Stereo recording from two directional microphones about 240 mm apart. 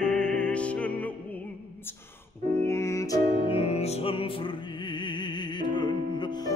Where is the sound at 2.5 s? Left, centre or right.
Centre.